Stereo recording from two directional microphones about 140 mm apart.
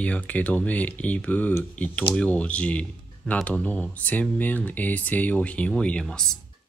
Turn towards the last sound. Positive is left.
turn(degrees=5)  # may be behind; listen again after turning